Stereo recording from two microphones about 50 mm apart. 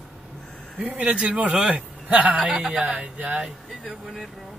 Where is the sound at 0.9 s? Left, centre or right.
Right.